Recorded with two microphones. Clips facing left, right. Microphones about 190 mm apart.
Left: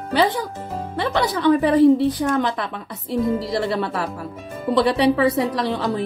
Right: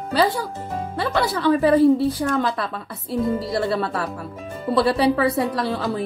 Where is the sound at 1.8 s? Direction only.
20° left (ahead or behind).